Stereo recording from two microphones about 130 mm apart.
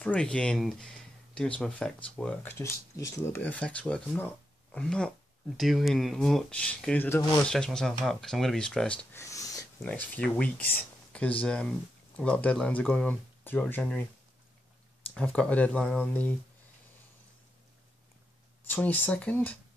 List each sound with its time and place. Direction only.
0.0 s speech: 10° left (ahead or behind)
2.9 s speech: 25° left (ahead or behind)
3.3 s speech: 10° left (ahead or behind)
9.2 s dog: 25° left (ahead or behind)
9.8 s speech: 10° left (ahead or behind)
15.1 s speech: 10° left (ahead or behind)
18.7 s speech: 15° left (ahead or behind)